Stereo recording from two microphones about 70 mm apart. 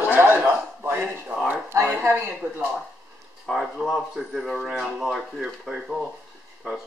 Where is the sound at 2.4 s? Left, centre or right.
Right.